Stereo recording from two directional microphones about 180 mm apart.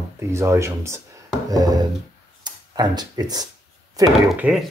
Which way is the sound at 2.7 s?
20° right (ahead or behind).